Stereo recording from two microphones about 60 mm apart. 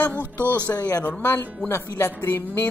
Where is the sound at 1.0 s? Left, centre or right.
Left.